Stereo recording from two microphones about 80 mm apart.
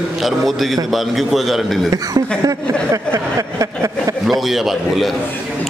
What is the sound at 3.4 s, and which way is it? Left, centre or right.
Speech, right.